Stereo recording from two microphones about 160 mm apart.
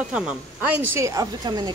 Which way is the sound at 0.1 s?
5° right (ahead or behind).